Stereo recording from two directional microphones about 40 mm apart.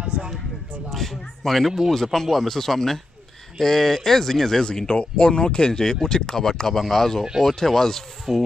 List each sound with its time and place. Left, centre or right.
0.0 s speech: right
0.8 s a man's voice: centre
4.6 s speech: left
8.3 s rub: centre